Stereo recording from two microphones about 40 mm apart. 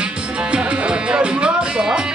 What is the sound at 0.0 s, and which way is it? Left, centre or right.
Music, right.